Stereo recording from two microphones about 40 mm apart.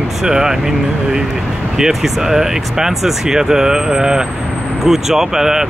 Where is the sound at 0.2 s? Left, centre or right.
Centre.